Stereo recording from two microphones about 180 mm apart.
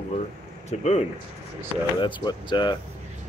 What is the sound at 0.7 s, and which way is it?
Speech, 35° left (ahead or behind).